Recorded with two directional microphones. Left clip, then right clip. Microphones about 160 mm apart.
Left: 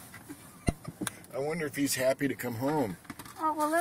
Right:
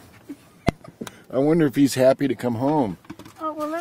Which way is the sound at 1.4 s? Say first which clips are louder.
Right 14 dB; 45° right (ahead or behind).